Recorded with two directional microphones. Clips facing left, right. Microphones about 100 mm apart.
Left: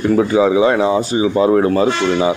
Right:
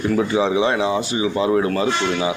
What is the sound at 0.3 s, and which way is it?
Speech, 40° left (ahead or behind).